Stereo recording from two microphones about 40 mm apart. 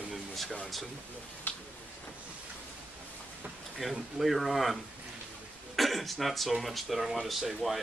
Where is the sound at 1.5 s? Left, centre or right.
Left.